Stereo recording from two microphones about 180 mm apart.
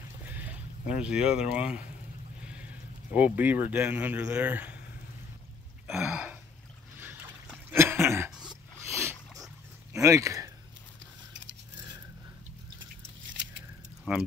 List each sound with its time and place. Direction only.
0.3 s speech: 10° right (ahead or behind)
3.1 s speech: 10° right (ahead or behind)
5.9 s speech: 10° right (ahead or behind)
7.7 s cough: 15° right (ahead or behind)
9.9 s speech: 15° right (ahead or behind)
13.2 s a sound: 90° right
14.1 s speech: 5° right (ahead or behind)